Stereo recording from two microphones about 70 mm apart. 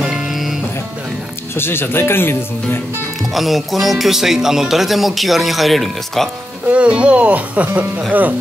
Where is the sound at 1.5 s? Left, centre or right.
Left.